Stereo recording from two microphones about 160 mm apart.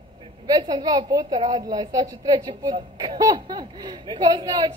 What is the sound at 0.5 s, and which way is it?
A woman's voice, 25° right (ahead or behind).